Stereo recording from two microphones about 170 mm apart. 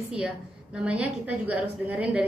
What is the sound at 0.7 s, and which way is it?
A woman's voice, 5° right (ahead or behind).